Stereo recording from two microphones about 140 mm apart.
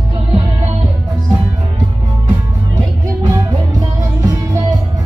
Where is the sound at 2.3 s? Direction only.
25° right (ahead or behind).